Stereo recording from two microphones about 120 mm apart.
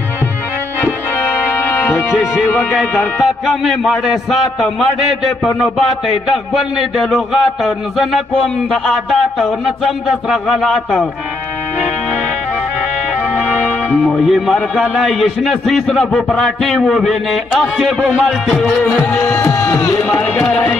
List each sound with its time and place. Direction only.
1.5 s music: 15° left (ahead or behind)
2.0 s a man's voice: 5° right (ahead or behind)
10.3 s a man's voice: 5° left (ahead or behind)
14.5 s a man's voice: centre (ahead or behind)
19.4 s a sound: 25° left (ahead or behind)
20.0 s speech: 10° left (ahead or behind)